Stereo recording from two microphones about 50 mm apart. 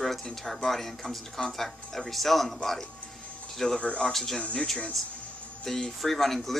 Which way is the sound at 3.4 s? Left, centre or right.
Centre.